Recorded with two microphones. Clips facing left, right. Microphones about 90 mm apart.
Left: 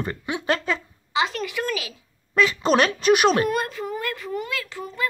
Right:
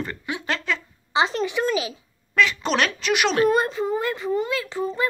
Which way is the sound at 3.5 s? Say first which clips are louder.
Right 5 dB; 25° right (ahead or behind).